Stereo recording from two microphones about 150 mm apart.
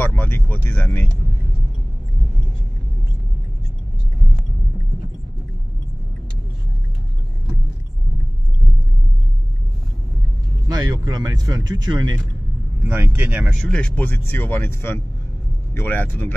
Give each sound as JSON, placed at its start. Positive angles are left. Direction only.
{"t": 0.0, "sound": "vehicle", "side_deg": 10}
{"t": 10.7, "sound": "speech", "side_deg": -30}
{"t": 12.8, "sound": "speech", "side_deg": -15}
{"t": 13.7, "sound": "speech", "side_deg": 5}